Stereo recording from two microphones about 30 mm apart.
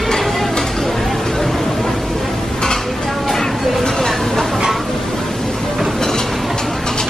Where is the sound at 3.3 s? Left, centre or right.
Centre.